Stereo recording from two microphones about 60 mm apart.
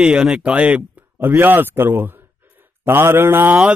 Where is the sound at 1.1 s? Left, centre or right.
Right.